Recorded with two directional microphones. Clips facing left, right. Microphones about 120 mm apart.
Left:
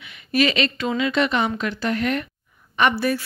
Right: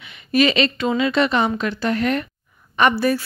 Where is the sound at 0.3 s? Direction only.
25° right (ahead or behind).